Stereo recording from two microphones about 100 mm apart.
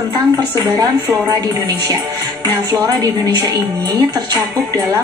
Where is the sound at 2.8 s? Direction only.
35° right (ahead or behind).